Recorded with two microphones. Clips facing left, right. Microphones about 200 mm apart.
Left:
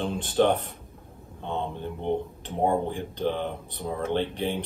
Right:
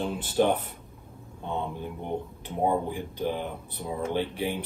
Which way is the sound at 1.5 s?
10° right (ahead or behind).